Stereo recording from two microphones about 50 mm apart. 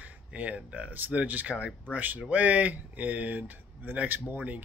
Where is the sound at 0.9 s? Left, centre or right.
Right.